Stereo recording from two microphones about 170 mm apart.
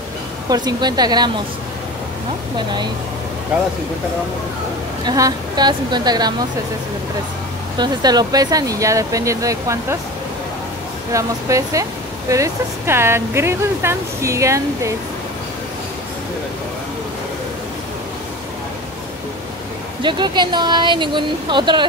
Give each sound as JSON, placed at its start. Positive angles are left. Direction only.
{"t": 0.5, "sound": "speech", "side_deg": -25}
{"t": 5.0, "sound": "speech", "side_deg": -20}
{"t": 7.7, "sound": "speech", "side_deg": -25}
{"t": 11.1, "sound": "speech", "side_deg": -20}
{"t": 20.0, "sound": "speech", "side_deg": -25}